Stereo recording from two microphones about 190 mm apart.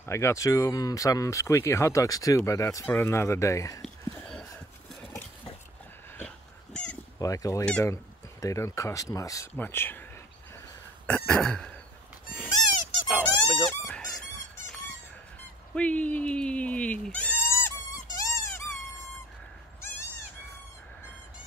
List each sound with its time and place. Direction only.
0.0 s speech: 15° left (ahead or behind)
3.8 s a sound: 5° left (ahead or behind)
6.1 s dog: 5° left (ahead or behind)
7.2 s speech: 20° left (ahead or behind)
7.6 s speech: 5° left (ahead or behind)
7.9 s speech: 15° left (ahead or behind)
11.1 s throat clearing: 5° left (ahead or behind)
13.1 s squeak: centre (ahead or behind)
15.7 s goat: 5° left (ahead or behind)
18.1 s a sound: 15° left (ahead or behind)
19.8 s goat: 15° left (ahead or behind)